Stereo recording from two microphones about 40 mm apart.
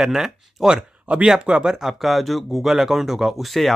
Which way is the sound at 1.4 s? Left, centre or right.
Right.